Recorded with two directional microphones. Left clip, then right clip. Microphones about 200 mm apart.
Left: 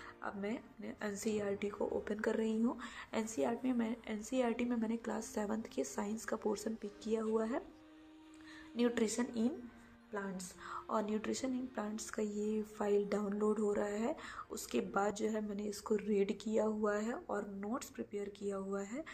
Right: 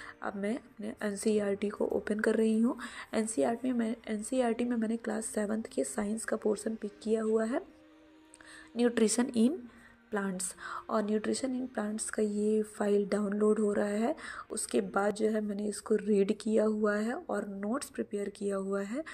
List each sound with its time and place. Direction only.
0.0 s a woman's voice: 30° right (ahead or behind)
8.7 s a woman's voice: 20° right (ahead or behind)
9.0 s a woman's voice: 35° right (ahead or behind)